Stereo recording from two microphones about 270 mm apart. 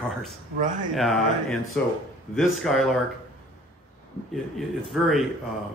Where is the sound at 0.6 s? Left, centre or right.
Right.